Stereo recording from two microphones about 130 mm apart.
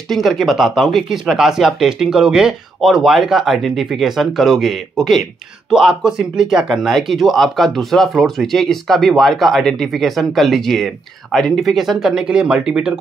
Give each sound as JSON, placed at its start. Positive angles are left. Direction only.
{"t": 0.1, "sound": "speech", "side_deg": 0}